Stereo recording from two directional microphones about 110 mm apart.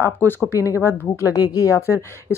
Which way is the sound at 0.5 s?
30° left (ahead or behind).